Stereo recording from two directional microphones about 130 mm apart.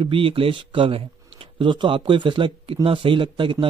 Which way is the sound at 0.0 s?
45° right (ahead or behind).